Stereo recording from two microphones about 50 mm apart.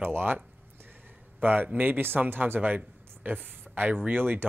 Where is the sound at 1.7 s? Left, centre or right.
Right.